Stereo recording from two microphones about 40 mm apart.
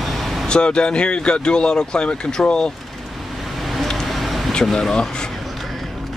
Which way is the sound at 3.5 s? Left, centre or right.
Centre.